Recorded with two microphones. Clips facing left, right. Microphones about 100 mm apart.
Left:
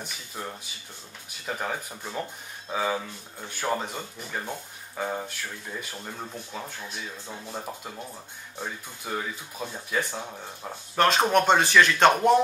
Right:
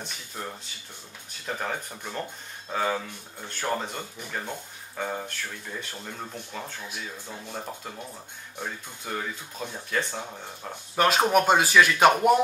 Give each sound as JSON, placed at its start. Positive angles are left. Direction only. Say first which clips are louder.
{"t": 0.0, "sound": "speech", "louder": "even", "side_deg": 5}
{"t": 7.2, "sound": "speech", "louder": "even", "side_deg": 20}
{"t": 8.6, "sound": "speech", "louder": "even", "side_deg": 5}
{"t": 11.0, "sound": "speech", "louder": "even", "side_deg": -5}